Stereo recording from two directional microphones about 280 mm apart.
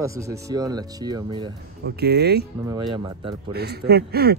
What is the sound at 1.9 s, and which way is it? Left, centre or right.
Speech, right.